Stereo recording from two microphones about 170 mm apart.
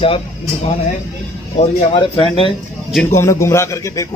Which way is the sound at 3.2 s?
15° left (ahead or behind).